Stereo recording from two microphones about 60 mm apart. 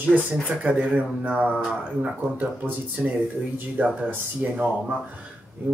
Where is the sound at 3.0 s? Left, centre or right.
Centre.